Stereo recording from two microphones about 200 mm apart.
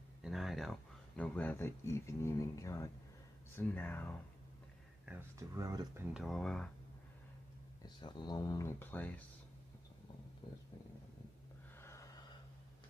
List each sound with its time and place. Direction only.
0.2 s speech: centre (ahead or behind)
5.0 s speech: 10° right (ahead or behind)
6.1 s speech: centre (ahead or behind)
7.8 s speech: 20° left (ahead or behind)
11.8 s gasp: 15° left (ahead or behind)